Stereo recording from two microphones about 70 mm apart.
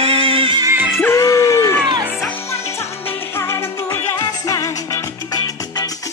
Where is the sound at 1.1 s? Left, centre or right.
Left.